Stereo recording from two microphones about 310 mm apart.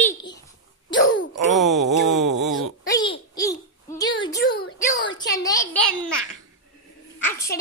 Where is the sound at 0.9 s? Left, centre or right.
Left.